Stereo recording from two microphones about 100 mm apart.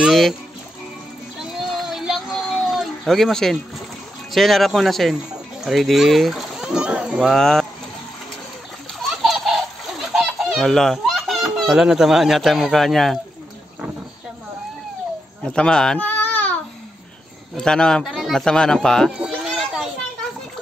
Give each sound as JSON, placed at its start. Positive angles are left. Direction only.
{"t": 0.0, "sound": "music", "side_deg": 0}
{"t": 1.4, "sound": "a sound", "side_deg": -5}
{"t": 4.3, "sound": "speech", "side_deg": 0}
{"t": 7.2, "sound": "speech", "side_deg": 5}
{"t": 9.8, "sound": "speech", "side_deg": 0}
{"t": 15.5, "sound": "speech", "side_deg": 10}
{"t": 16.1, "sound": "babbling", "side_deg": 15}
{"t": 17.6, "sound": "speech", "side_deg": 5}
{"t": 19.2, "sound": "a sound", "side_deg": -5}